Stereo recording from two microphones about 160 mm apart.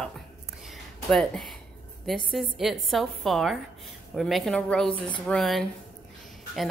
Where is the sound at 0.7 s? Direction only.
5° left (ahead or behind).